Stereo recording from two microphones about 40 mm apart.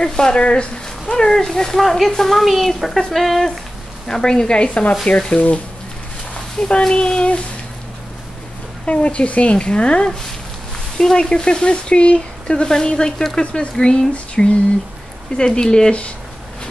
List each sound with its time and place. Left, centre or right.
0.0 s speech: centre
1.1 s speech: centre
4.1 s speech: centre; by 5.6 s left
6.6 s speech: centre
8.8 s speech: left
14.1 s a sound: left
15.3 s speech: left